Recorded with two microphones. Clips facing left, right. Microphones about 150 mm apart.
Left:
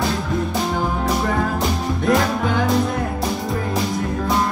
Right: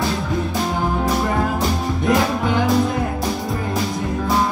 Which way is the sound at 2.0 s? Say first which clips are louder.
Even; centre (ahead or behind).